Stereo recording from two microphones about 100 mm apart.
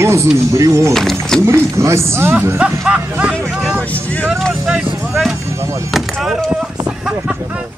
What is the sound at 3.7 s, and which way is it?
Speech, 15° left (ahead or behind).